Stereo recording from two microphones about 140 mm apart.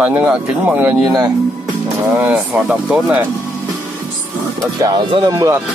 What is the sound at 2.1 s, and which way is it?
Speech, 10° right (ahead or behind).